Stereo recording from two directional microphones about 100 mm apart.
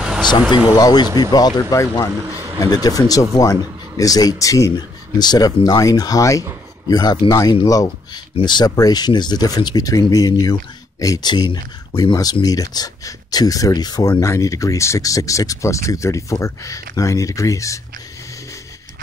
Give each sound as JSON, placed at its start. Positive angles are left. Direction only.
{"t": 0.2, "sound": "speech", "side_deg": 45}
{"t": 2.1, "sound": "speech", "side_deg": -30}
{"t": 2.6, "sound": "speech", "side_deg": 40}
{"t": 8.4, "sound": "speech", "side_deg": 50}